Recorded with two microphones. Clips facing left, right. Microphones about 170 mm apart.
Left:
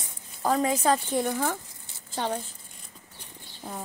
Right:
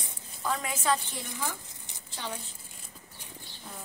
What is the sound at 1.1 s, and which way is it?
Speech, 55° left (ahead or behind).